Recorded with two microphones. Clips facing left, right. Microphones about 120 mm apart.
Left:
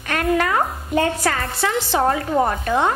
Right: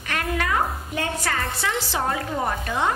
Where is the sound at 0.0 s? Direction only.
50° left (ahead or behind).